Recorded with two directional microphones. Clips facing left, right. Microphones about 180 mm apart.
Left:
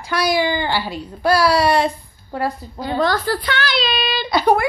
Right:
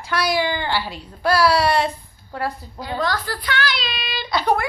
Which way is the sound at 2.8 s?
30° left (ahead or behind).